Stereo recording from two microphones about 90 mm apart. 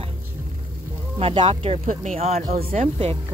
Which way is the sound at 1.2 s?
90° right.